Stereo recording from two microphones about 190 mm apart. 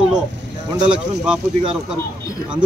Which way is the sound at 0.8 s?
5° right (ahead or behind).